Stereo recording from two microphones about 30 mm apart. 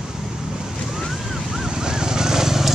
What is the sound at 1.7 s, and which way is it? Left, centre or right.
Vehicle, right.